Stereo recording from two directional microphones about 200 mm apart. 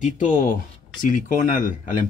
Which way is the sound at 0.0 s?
40° left (ahead or behind).